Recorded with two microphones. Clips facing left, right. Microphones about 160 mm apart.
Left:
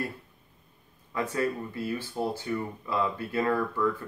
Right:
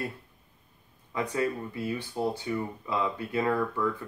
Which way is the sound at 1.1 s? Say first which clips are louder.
Even; 20° right (ahead or behind).